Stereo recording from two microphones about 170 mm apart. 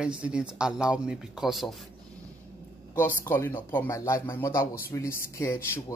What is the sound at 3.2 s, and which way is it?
Speech, 15° left (ahead or behind).